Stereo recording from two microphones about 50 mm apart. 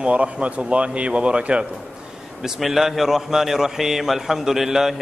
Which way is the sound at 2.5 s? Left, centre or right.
Centre.